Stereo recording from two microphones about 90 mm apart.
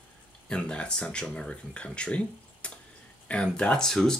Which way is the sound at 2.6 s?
15° left (ahead or behind).